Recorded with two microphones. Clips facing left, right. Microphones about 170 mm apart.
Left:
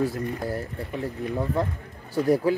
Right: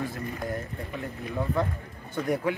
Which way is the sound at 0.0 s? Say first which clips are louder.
Left 6 dB; 40° left (ahead or behind).